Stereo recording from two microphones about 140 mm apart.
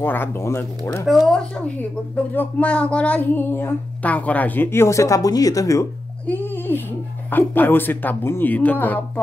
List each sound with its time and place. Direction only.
0.0 s speech: 15° left (ahead or behind)
1.0 s speech: centre (ahead or behind)
1.8 s a child's voice: 15° left (ahead or behind)